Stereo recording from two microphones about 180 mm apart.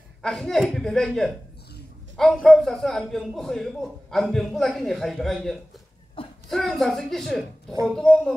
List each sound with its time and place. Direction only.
0.2 s a man's voice: centre (ahead or behind)
6.2 s a sound: 30° left (ahead or behind)
6.5 s a man's voice: centre (ahead or behind)